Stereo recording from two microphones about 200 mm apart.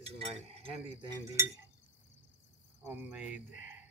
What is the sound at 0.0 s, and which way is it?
Speech, 30° right (ahead or behind).